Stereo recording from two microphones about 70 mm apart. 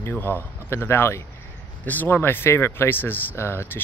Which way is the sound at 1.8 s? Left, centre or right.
Left.